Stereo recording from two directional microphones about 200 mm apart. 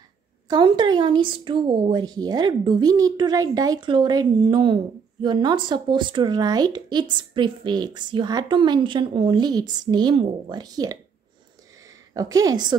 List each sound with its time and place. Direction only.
0.5 s speech: 20° right (ahead or behind)
12.1 s speech: 20° right (ahead or behind)